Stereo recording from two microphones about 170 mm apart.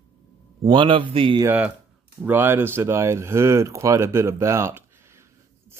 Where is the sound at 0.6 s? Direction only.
25° right (ahead or behind).